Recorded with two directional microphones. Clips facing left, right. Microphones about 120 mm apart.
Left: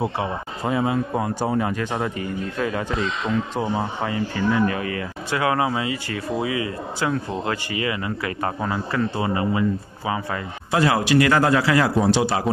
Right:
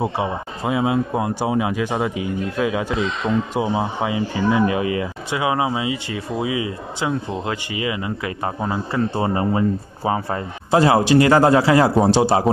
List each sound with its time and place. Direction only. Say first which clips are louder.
0.7 s speech: right 2 dB; 10° right (ahead or behind)
8.9 s speech: right 3 dB; 30° right (ahead or behind)